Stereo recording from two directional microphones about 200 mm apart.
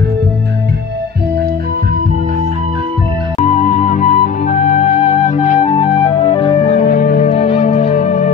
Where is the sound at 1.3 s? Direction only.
45° right (ahead or behind).